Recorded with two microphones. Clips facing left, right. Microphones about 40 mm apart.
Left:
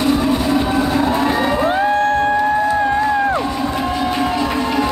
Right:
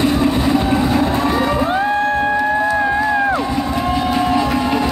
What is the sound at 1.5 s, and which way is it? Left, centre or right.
Music, centre.